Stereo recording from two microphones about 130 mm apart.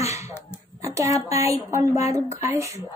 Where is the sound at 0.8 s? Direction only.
25° right (ahead or behind).